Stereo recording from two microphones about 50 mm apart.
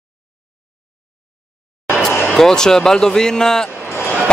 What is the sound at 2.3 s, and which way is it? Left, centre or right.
Speech, centre.